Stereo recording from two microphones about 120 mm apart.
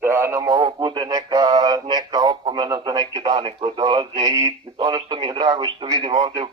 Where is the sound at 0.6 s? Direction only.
40° right (ahead or behind).